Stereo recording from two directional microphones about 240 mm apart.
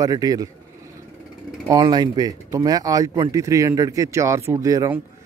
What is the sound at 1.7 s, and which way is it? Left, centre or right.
Speech, centre.